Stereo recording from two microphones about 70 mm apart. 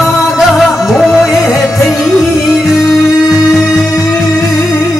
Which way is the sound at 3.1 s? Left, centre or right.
Left.